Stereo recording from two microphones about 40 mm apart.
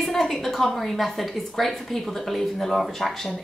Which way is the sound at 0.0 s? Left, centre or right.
Centre.